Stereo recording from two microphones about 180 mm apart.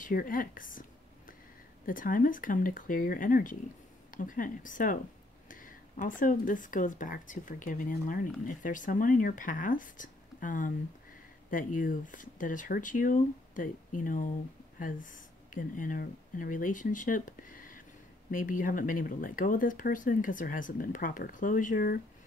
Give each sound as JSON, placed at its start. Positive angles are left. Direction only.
{"t": 0.0, "sound": "a woman's voice", "side_deg": 50}